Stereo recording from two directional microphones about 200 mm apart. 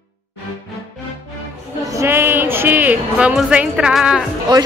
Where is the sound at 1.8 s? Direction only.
15° right (ahead or behind).